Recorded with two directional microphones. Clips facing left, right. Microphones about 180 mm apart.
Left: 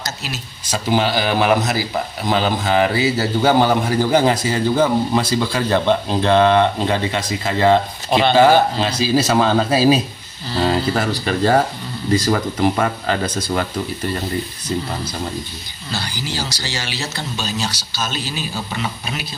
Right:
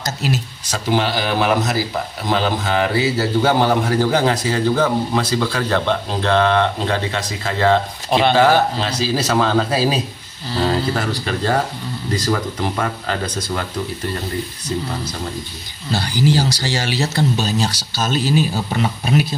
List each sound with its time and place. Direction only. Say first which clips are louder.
0.7 s a man's voice: left 1 dB; 5° left (ahead or behind)
15.9 s speech: right 9 dB; 45° right (ahead or behind)